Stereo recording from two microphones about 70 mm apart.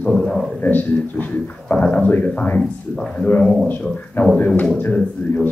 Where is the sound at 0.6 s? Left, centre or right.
Left.